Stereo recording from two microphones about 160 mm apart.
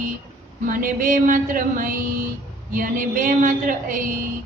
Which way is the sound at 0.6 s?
60° right (ahead or behind).